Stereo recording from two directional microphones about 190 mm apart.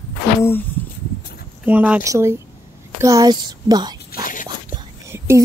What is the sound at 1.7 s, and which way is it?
A woman's voice, 10° right (ahead or behind).